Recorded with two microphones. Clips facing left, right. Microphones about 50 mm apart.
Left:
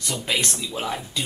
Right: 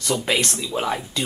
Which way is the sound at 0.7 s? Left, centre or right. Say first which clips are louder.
Right 6 dB; centre.